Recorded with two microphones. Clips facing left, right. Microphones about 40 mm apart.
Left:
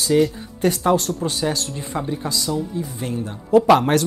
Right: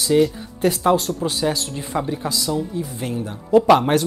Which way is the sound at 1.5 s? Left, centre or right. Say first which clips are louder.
Right 1 dB; centre.